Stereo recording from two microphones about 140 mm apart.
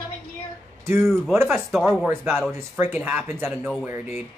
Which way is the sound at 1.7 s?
Centre (ahead or behind).